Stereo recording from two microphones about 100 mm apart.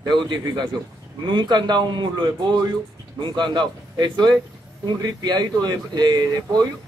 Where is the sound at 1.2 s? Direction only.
50° right (ahead or behind).